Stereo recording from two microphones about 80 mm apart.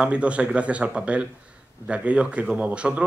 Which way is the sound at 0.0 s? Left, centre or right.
Centre.